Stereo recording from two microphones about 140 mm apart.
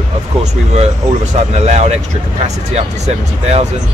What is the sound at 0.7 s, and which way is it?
Speech, 55° right (ahead or behind).